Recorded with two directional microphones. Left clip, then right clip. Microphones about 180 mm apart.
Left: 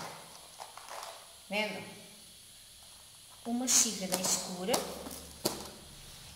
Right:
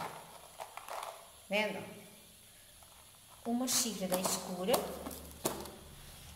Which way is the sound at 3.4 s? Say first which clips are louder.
Left 4 dB; centre (ahead or behind).